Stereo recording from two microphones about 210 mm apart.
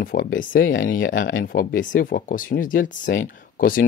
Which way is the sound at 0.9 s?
60° left (ahead or behind).